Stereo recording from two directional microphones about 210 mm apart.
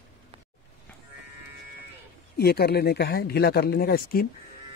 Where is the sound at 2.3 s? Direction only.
50° left (ahead or behind).